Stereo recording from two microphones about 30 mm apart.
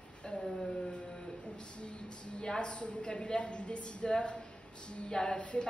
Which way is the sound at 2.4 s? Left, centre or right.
Left.